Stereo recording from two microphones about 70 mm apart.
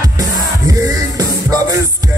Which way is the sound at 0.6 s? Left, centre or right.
Right.